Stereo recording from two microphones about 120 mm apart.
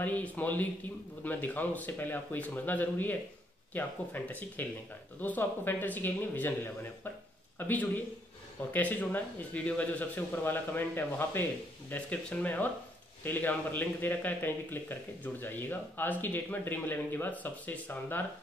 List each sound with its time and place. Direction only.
0.0 s speech: 10° left (ahead or behind)